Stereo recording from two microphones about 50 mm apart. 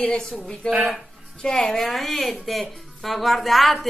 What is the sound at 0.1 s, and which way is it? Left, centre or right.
Speech, centre.